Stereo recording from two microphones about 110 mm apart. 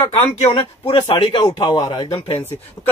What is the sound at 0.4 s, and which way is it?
Speech, 70° left (ahead or behind).